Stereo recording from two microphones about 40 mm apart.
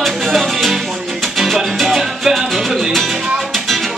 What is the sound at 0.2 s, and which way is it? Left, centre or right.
Music, centre.